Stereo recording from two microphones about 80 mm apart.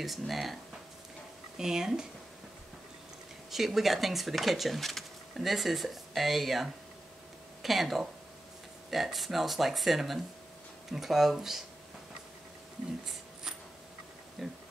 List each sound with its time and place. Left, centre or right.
0.0 s speech: centre
1.6 s speech: centre
3.5 s speech: centre
14.4 s speech: centre